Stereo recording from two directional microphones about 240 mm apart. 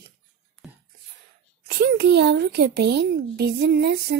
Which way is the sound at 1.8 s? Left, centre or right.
Right.